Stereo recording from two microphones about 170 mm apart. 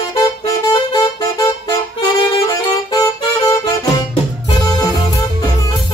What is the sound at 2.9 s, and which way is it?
Music, 20° left (ahead or behind).